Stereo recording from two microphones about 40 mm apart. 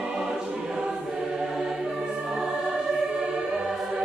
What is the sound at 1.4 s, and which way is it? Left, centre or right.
Music, centre.